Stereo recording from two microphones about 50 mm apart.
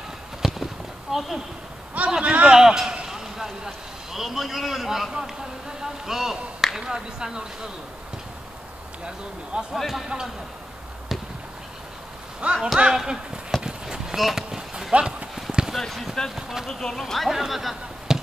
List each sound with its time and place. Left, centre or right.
0.4 s clip-clop: centre
1.1 s a man's voice: centre
9.0 s speech: centre
9.7 s speech: centre
10.0 s speech: centre
12.5 s run: centre
15.0 s speech: right
15.7 s speech: centre
16.3 s speech: centre
16.6 s speech: centre